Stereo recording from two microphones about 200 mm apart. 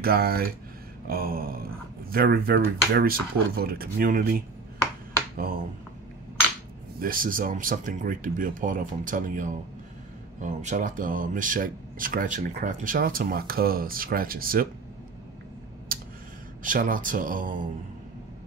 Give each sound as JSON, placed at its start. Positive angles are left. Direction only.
{"t": 0.0, "sound": "speech", "side_deg": -50}
{"t": 7.0, "sound": "speech", "side_deg": -45}
{"t": 15.9, "sound": "a sound", "side_deg": -50}
{"t": 16.6, "sound": "speech", "side_deg": -40}